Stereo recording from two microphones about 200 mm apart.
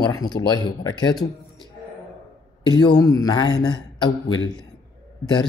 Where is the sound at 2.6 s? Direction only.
20° left (ahead or behind).